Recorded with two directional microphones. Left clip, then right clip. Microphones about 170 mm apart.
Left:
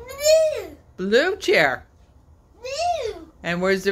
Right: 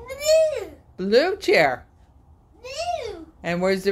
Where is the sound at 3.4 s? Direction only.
Centre (ahead or behind).